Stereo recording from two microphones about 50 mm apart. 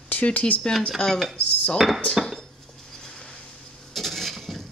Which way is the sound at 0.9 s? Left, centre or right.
Centre.